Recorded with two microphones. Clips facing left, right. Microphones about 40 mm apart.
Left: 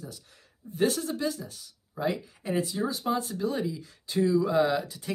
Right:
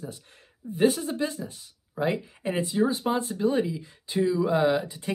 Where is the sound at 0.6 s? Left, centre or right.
Centre.